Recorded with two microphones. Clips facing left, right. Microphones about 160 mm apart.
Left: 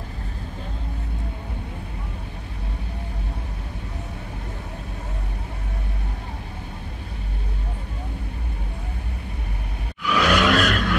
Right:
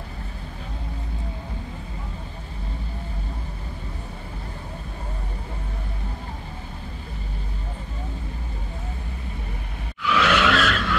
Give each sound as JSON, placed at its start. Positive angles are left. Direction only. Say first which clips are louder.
{"t": 10.0, "sound": "vehicle", "louder": "left 1 dB", "side_deg": 40}